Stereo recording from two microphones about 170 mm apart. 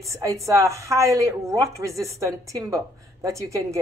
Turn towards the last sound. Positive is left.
turn(degrees=-20)  # may be behind; listen again after turning